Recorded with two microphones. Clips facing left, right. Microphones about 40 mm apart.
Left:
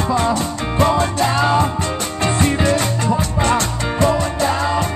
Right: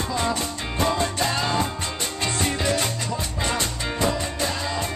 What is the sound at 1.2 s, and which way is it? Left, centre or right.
Music, left.